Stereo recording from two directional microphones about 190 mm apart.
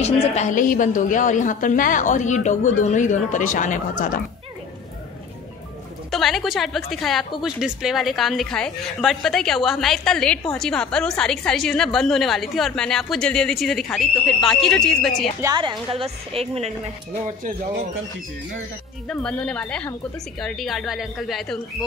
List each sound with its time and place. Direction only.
0.0 s a woman's voice: 40° left (ahead or behind)
6.0 s a woman's voice: centre (ahead or behind)
15.4 s a woman's voice: 25° right (ahead or behind)
17.4 s speech: 45° right (ahead or behind)
19.0 s a woman's voice: 5° left (ahead or behind)